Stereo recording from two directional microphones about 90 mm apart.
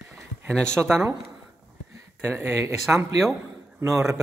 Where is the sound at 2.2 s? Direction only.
25° right (ahead or behind).